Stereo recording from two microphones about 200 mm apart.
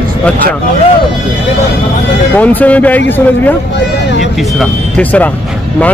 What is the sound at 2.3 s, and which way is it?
Speech, 5° left (ahead or behind).